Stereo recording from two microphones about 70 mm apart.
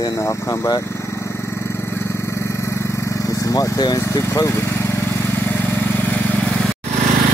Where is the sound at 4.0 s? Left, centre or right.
Left.